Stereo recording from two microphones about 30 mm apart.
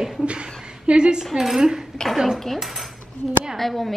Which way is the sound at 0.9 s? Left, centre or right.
Right.